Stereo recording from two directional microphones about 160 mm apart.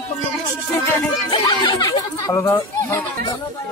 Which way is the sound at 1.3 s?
30° left (ahead or behind).